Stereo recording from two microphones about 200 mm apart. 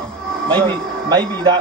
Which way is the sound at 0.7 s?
5° left (ahead or behind).